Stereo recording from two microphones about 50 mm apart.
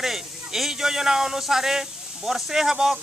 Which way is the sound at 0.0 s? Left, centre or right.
Centre.